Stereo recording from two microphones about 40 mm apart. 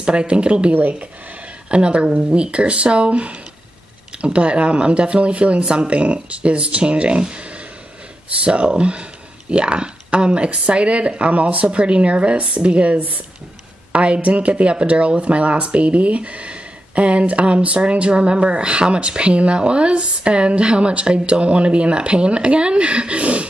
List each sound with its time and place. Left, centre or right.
0.0 s speech: right